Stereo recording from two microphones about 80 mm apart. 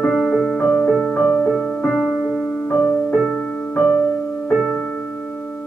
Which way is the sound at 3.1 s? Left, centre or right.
Centre.